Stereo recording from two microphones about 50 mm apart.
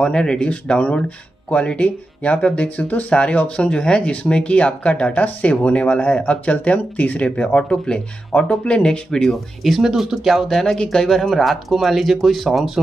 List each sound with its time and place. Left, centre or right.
0.0 s speech: centre
9.6 s speech: centre
10.8 s speech: centre